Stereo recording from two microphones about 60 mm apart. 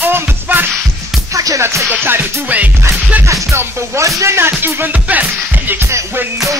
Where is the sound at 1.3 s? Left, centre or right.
Right.